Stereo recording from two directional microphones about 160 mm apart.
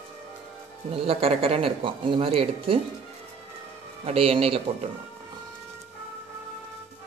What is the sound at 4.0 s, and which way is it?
Speech, 35° right (ahead or behind).